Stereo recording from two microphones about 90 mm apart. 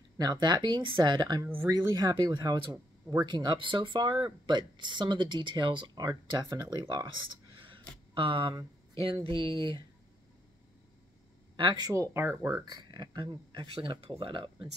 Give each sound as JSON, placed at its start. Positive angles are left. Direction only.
{"t": 0.2, "sound": "speech", "side_deg": -50}
{"t": 3.3, "sound": "speech", "side_deg": -55}
{"t": 6.0, "sound": "speech", "side_deg": -45}
{"t": 7.5, "sound": "a sound", "side_deg": -65}
{"t": 8.1, "sound": "speech", "side_deg": -70}
{"t": 9.2, "sound": "speech", "side_deg": -75}
{"t": 11.5, "sound": "speech", "side_deg": -55}
{"t": 11.9, "sound": "speech", "side_deg": -30}
{"t": 12.6, "sound": "speech", "side_deg": -50}